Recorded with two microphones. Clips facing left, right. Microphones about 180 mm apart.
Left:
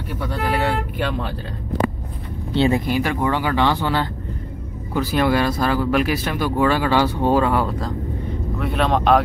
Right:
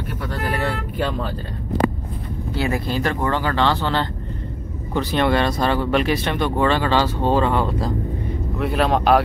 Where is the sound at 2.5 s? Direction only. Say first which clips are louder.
Left 5 dB; 25° left (ahead or behind).